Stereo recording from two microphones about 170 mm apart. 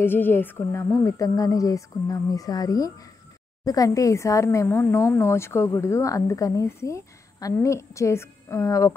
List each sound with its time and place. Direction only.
0.0 s speech: 10° left (ahead or behind)